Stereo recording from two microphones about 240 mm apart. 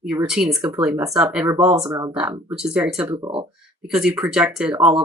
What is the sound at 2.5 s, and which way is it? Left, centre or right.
Speech, centre.